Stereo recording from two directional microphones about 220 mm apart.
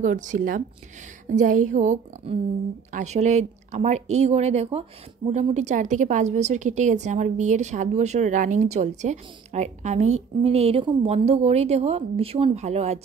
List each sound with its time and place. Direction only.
0.0 s a woman's voice: 35° right (ahead or behind)